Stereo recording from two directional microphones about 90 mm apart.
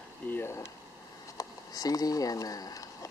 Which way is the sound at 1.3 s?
40° left (ahead or behind).